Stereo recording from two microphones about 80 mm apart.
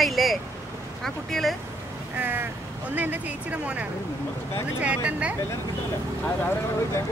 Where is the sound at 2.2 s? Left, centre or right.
Right.